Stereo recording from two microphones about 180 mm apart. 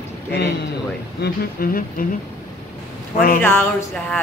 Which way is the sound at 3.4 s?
15° left (ahead or behind).